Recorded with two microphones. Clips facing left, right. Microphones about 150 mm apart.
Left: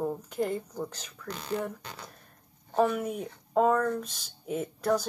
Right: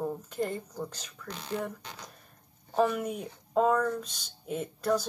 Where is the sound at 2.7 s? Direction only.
Centre (ahead or behind).